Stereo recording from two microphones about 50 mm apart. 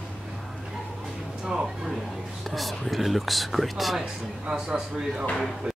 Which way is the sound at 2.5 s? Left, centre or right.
Centre.